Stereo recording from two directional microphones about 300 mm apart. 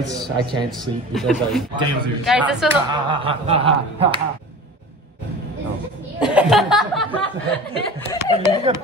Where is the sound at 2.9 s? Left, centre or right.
Centre.